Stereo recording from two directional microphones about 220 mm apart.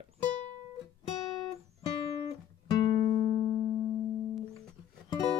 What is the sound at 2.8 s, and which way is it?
Music, 25° left (ahead or behind).